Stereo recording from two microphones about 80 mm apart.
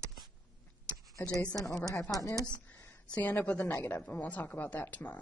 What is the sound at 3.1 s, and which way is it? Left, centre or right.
Speech, centre.